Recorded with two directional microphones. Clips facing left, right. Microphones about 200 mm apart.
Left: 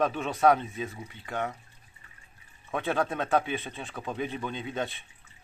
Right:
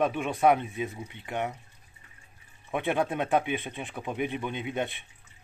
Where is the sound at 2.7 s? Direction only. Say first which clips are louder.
Right 1 dB; 15° right (ahead or behind).